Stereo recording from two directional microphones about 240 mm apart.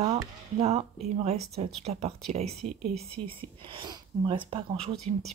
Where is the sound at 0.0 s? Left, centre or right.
Right.